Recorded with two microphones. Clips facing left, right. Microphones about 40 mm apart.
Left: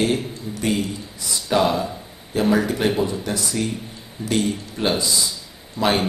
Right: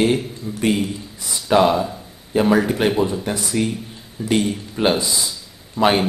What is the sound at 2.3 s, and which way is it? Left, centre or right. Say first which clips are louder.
A man's voice: right 3 dB; centre.